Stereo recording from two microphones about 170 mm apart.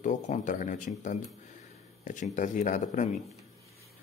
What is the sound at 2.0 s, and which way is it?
Speech, 45° left (ahead or behind).